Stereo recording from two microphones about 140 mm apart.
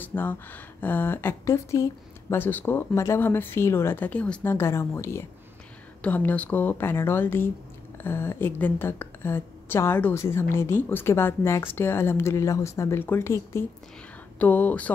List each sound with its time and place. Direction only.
0.0 s a woman's voice: 15° left (ahead or behind)